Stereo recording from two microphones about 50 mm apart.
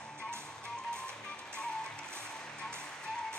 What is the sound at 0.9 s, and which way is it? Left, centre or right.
Music, centre.